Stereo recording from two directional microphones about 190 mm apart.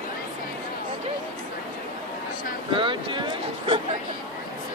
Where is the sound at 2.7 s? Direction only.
25° right (ahead or behind).